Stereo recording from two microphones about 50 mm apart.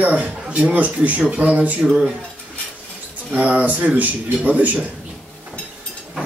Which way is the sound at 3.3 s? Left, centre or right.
Right.